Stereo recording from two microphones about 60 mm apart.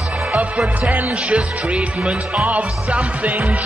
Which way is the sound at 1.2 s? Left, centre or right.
Centre.